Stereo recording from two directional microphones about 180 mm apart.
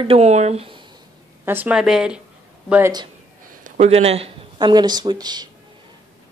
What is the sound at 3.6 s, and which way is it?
Speech, 35° right (ahead or behind).